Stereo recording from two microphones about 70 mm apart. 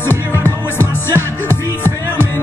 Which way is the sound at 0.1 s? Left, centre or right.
Left.